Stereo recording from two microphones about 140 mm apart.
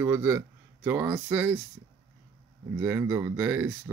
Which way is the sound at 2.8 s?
15° right (ahead or behind).